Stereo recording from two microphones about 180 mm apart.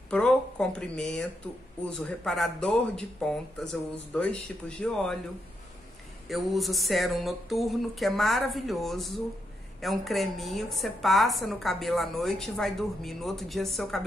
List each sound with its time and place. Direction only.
0.1 s a woman's voice: 5° left (ahead or behind)
6.2 s a woman's voice: centre (ahead or behind)